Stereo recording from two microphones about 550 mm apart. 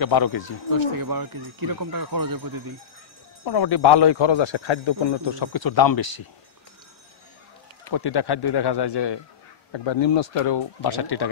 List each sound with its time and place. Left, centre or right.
0.0 s speech: left
0.9 s speech: right
3.4 s a man's voice: left
7.9 s a man's voice: left